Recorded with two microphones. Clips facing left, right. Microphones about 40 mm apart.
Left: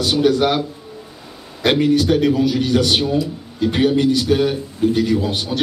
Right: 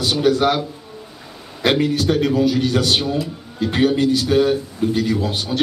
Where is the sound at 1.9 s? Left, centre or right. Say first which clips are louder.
Left 3 dB; centre.